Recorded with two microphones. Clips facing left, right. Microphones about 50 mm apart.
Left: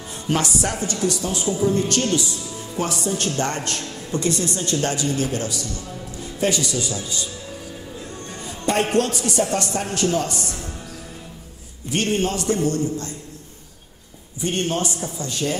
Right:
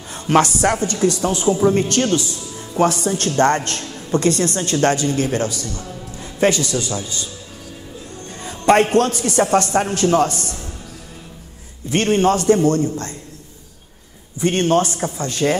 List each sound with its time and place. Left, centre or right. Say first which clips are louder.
0.3 s a woman's voice: right 8 dB; right
0.8 s a woman's voice: right 5 dB; right
8.5 s music: right 8 dB; right
8.9 s a woman's voice: right 4 dB; right
12.2 s a woman's voice: right 7 dB; right
14.4 s a woman's voice: right 7 dB; right